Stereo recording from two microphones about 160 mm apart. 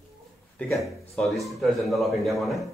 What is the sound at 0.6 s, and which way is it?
A man's voice, centre (ahead or behind).